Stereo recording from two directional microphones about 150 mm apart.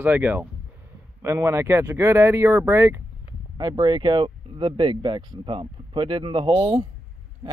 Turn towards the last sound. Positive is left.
turn(degrees=-35)  # may be behind; listen again after turning